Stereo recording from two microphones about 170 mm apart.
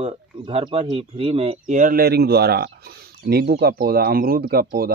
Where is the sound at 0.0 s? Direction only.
35° right (ahead or behind).